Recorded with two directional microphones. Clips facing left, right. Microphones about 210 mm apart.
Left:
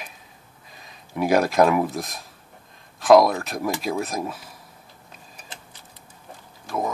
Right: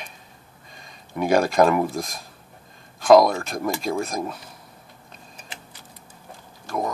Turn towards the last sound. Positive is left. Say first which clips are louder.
# even
turn(degrees=5)  # may be behind; listen again after turning